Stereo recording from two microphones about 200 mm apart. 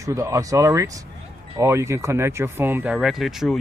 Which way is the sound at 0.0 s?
15° right (ahead or behind).